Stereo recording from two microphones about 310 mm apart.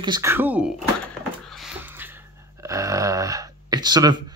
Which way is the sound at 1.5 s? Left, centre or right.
Centre.